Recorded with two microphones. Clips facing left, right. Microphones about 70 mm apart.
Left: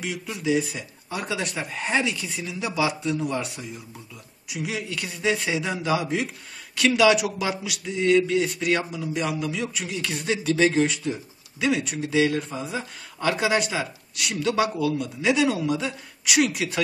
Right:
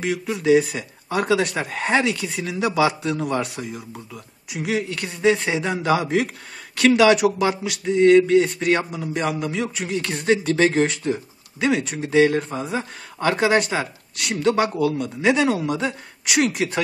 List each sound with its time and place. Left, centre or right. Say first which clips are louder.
0.0 s speech: right 6 dB; right
4.5 s speech: right 6 dB; right
5.8 s a woman's voice: right 5 dB; right